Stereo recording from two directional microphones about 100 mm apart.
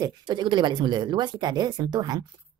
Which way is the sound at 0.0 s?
50° right (ahead or behind).